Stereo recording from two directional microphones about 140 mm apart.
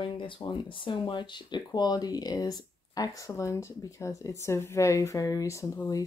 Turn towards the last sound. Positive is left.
turn(degrees=20)  # may be behind; listen again after turning